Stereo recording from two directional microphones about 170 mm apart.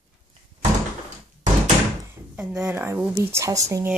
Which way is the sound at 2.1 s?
5° right (ahead or behind).